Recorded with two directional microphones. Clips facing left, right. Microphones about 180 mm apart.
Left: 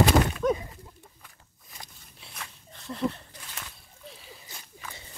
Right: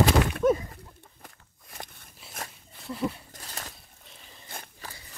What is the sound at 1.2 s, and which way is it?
Walk, 55° right (ahead or behind).